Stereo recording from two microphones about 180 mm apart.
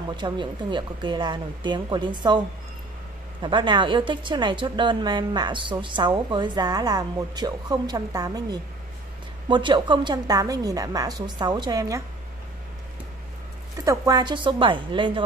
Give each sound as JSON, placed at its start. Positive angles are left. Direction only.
{"t": 0.1, "sound": "a woman's voice", "side_deg": -25}
{"t": 3.4, "sound": "a woman's voice", "side_deg": -25}
{"t": 13.8, "sound": "a woman's voice", "side_deg": -20}